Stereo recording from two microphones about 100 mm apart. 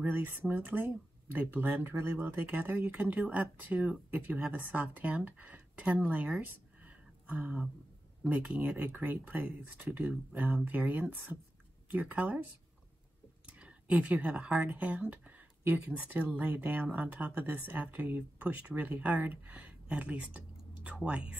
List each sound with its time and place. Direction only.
0.0 s speech: 20° right (ahead or behind)
13.5 s speech: 15° right (ahead or behind)